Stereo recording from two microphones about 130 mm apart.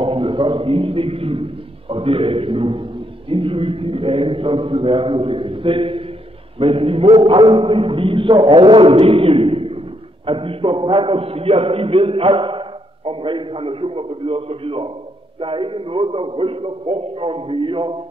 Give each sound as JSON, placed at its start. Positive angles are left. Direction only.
{"t": 0.0, "sound": "a man's voice", "side_deg": -45}